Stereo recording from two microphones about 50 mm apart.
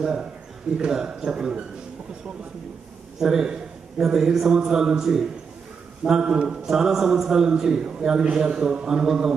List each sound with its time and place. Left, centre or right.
0.0 s a man's voice: centre
3.2 s a man's voice: centre